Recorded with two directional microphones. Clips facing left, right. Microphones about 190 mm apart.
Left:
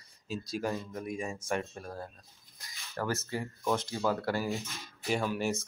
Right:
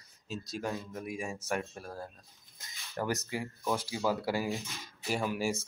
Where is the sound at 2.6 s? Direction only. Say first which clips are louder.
Even; 15° right (ahead or behind).